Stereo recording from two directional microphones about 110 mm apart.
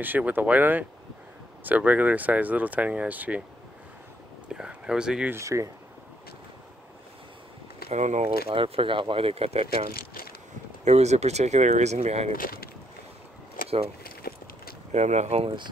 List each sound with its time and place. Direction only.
0.0 s speech: 15° right (ahead or behind)
4.5 s speech: 5° right (ahead or behind)
5.3 s speech: 25° right (ahead or behind)
7.9 s speech: 90° right
8.5 s speech: 55° right (ahead or behind)
10.8 s speech: 90° right
14.9 s speech: 90° right
15.4 s speech: 45° right (ahead or behind)